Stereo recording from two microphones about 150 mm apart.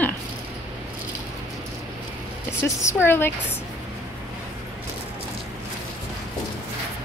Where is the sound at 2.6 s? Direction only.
15° left (ahead or behind).